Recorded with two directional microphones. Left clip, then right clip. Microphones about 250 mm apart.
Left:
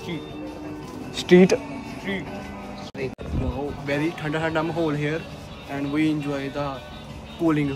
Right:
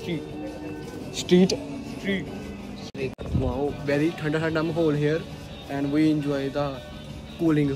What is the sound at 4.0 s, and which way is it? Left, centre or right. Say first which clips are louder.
Speech: even; centre.